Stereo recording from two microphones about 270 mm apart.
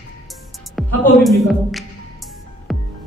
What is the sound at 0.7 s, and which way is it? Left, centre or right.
A woman's voice, centre.